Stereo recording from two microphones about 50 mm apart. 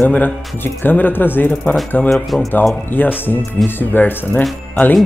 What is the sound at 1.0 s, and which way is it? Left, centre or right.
Speech, left.